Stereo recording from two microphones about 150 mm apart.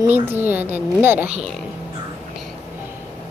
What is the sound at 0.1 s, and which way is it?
A woman's voice, 15° right (ahead or behind).